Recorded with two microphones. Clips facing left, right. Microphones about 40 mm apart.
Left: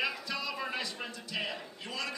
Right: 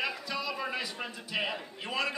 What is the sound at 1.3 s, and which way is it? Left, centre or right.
Speech, right.